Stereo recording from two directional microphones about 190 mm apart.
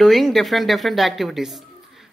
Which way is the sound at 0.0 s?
Centre (ahead or behind).